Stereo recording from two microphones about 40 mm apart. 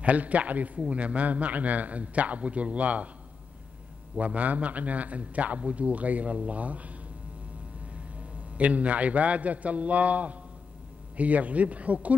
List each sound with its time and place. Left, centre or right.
0.0 s a man's voice: right
4.2 s a man's voice: right